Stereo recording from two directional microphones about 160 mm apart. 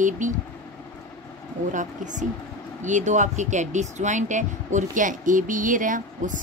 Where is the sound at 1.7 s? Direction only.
50° right (ahead or behind).